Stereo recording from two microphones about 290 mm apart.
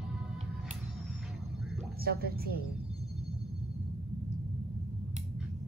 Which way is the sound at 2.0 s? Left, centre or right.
Right.